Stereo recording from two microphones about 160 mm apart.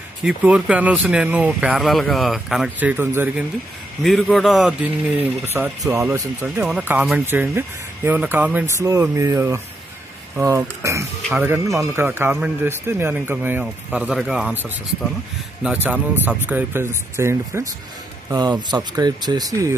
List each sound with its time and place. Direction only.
0.2 s speech: 5° right (ahead or behind)
4.0 s speech: centre (ahead or behind); by 19.7 s 20° right (ahead or behind)